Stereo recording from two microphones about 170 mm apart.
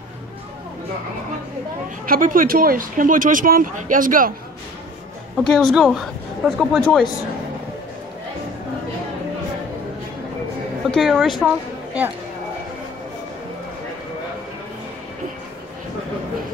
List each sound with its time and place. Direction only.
2.0 s speech: 55° right (ahead or behind)
5.4 s speech: 5° left (ahead or behind)
10.9 s speech: centre (ahead or behind)
11.4 s a sound: 10° right (ahead or behind)